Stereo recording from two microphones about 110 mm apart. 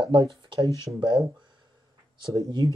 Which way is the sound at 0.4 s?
45° right (ahead or behind).